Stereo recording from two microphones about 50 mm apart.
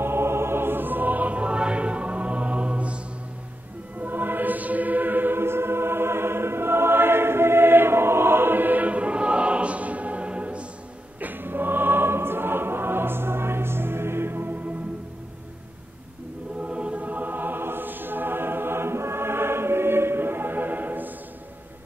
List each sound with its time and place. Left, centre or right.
0.0 s music: right
4.0 s music: right
11.1 s music: right
16.6 s music: right